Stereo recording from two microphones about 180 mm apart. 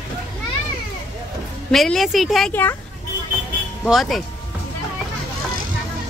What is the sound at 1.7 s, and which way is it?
Speech, centre (ahead or behind).